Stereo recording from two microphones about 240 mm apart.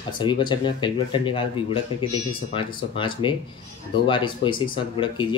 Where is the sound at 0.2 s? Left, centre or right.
Centre.